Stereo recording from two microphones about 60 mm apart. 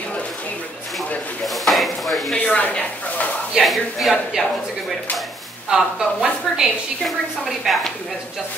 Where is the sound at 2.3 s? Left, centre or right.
Left.